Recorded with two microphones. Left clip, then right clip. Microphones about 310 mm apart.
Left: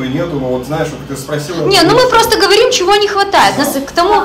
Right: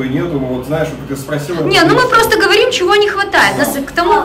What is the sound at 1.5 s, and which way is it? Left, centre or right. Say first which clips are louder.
A woman's voice: left 2 dB; centre.